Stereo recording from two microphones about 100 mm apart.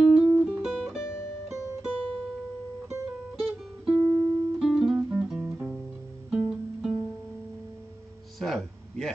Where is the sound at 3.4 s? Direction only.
5° left (ahead or behind).